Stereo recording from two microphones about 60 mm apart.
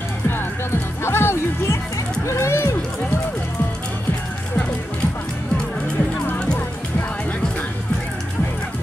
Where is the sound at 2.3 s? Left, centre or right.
Left.